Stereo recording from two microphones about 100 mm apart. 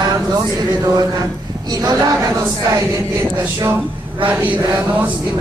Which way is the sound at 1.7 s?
40° right (ahead or behind).